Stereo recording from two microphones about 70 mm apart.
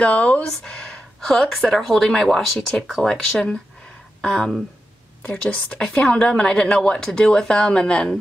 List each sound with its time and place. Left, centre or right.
0.0 s speech: centre
1.2 s speech: centre
5.2 s a woman's voice: centre